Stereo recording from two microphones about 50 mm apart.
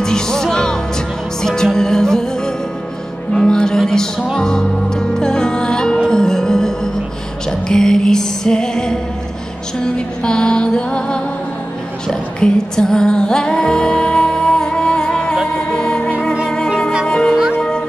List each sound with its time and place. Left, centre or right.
0.0 s music: centre
12.4 s music: centre
17.1 s music: centre